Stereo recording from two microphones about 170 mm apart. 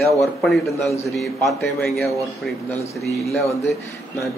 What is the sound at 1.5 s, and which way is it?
Speech, centre (ahead or behind).